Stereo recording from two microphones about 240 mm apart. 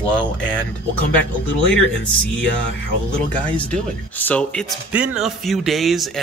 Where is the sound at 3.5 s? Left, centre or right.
Centre.